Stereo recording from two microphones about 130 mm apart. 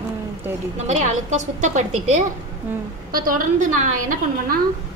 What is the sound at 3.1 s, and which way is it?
A woman's voice, 90° right.